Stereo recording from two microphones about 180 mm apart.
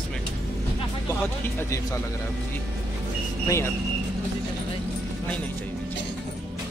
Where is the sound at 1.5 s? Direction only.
15° left (ahead or behind).